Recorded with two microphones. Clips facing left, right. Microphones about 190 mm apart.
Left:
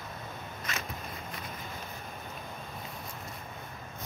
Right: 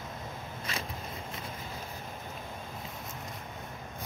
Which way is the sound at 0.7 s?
30° right (ahead or behind).